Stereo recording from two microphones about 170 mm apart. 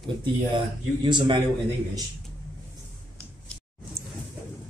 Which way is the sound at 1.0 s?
25° right (ahead or behind).